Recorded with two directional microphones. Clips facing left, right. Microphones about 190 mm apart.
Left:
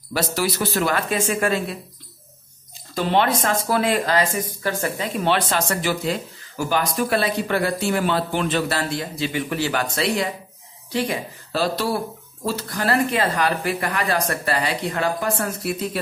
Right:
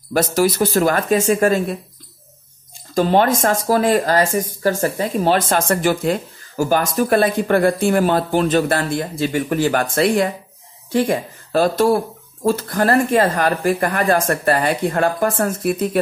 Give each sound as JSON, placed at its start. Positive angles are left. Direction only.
{"t": 0.1, "sound": "speech", "side_deg": -45}
{"t": 2.9, "sound": "speech", "side_deg": -45}